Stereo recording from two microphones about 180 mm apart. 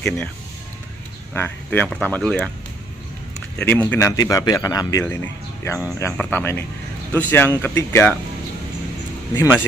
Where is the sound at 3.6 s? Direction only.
10° left (ahead or behind).